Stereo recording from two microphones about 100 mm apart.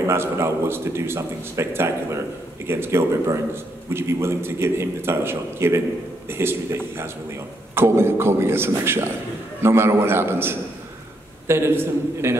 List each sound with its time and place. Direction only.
0.0 s a man's voice: 25° right (ahead or behind)